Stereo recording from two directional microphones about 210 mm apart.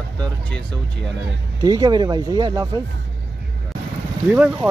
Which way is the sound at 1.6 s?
20° right (ahead or behind).